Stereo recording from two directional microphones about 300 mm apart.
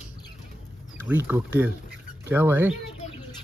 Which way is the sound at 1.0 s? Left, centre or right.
Centre.